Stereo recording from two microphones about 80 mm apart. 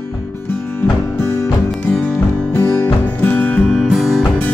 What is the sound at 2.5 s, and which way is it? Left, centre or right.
Music, left.